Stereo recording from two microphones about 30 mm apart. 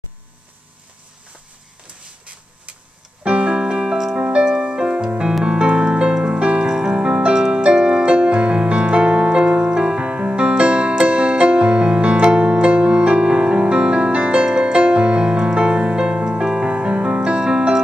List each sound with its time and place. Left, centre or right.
3.3 s keyboard: right
3.9 s keyboard: centre
4.2 s music: right
5.4 s piano: right
6.2 s music: right
6.6 s music: right
10.0 s music: right
16.6 s music: right
17.2 s music: right